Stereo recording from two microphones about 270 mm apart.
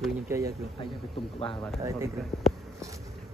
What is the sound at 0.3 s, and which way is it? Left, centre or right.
Speech, centre.